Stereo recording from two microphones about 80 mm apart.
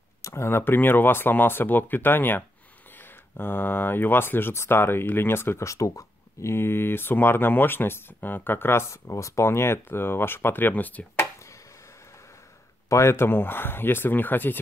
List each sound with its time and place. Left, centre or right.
0.2 s speech: left
12.9 s speech: left